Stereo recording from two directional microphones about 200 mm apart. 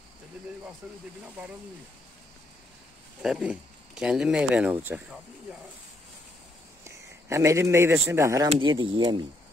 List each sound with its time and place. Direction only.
0.8 s speech: 10° right (ahead or behind)
3.2 s speech: 5° right (ahead or behind)
6.9 s speech: 15° right (ahead or behind)
8.5 s speech: 25° right (ahead or behind)